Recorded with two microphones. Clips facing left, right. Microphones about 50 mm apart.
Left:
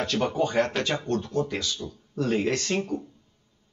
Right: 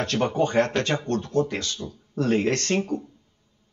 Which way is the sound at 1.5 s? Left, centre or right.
Right.